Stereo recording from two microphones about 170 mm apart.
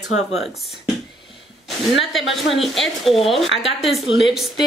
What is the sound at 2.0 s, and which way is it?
A woman's voice, centre (ahead or behind).